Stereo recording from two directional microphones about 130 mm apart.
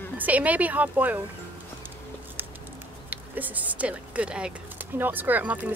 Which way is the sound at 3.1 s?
15° right (ahead or behind).